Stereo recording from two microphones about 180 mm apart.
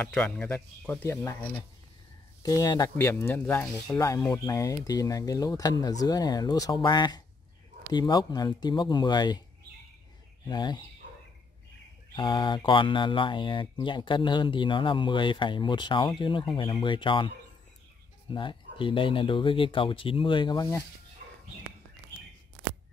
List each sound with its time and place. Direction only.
0.0 s speech: 5° left (ahead or behind)
3.9 s speech: 15° left (ahead or behind)
10.5 s speech: 25° left (ahead or behind)
12.2 s speech: 25° left (ahead or behind)
18.3 s speech: 25° left (ahead or behind)
21.2 s bird: 50° right (ahead or behind)